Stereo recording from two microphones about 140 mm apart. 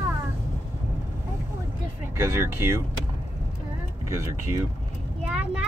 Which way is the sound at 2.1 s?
20° right (ahead or behind).